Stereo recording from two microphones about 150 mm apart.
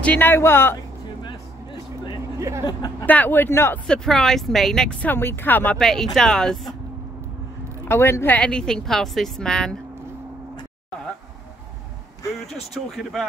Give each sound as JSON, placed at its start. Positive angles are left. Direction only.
{"t": 0.0, "sound": "speech", "side_deg": 10}
{"t": 1.2, "sound": "vehicle", "side_deg": 30}
{"t": 2.3, "sound": "a sound", "side_deg": -20}
{"t": 3.1, "sound": "speech", "side_deg": 10}
{"t": 3.8, "sound": "speech", "side_deg": 5}
{"t": 7.9, "sound": "speech", "side_deg": 15}